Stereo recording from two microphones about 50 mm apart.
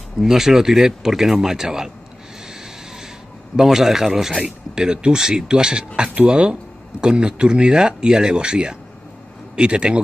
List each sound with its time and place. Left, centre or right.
0.2 s speech: centre
3.5 s speech: centre